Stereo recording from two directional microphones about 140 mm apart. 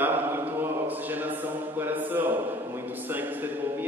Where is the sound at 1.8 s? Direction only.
15° right (ahead or behind).